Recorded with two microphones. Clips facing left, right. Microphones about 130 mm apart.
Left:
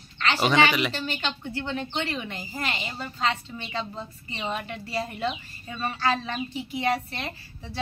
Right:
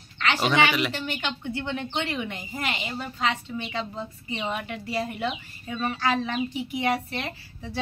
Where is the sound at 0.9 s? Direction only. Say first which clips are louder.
Even; 15° right (ahead or behind).